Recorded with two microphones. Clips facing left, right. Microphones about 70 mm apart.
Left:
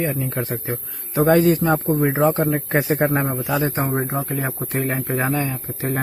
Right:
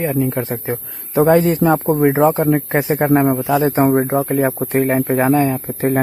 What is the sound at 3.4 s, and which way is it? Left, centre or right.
Speech, right.